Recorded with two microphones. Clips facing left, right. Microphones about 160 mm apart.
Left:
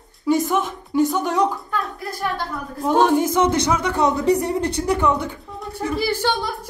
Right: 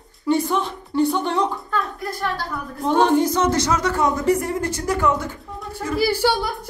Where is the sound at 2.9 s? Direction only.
10° left (ahead or behind).